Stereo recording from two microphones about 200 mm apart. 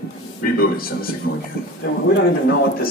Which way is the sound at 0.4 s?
50° left (ahead or behind).